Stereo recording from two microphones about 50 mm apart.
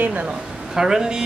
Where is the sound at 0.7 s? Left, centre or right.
Centre.